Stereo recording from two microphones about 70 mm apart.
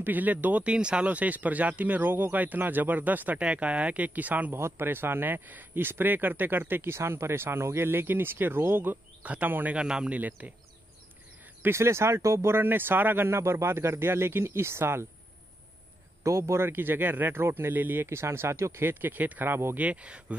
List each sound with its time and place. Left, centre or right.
0.0 s speech: right
4.6 s speech: right
9.8 s speech: centre
11.6 s speech: right
12.5 s speech: right
16.3 s speech: right
19.8 s speech: centre